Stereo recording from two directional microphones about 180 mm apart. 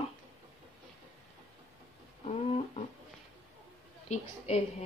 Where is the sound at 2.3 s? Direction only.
35° left (ahead or behind).